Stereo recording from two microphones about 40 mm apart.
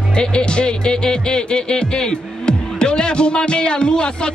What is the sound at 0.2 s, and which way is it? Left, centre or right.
Speech, left.